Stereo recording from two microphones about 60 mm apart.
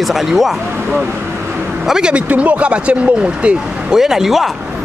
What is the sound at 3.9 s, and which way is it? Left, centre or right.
Speech, centre.